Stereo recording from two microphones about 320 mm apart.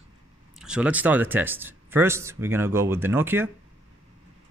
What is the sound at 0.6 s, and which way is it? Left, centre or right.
A man's voice, centre.